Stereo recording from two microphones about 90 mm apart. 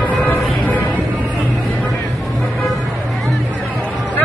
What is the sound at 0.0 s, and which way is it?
Music, 20° left (ahead or behind).